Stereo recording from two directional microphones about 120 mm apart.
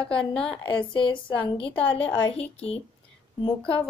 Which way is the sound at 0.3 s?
5° left (ahead or behind).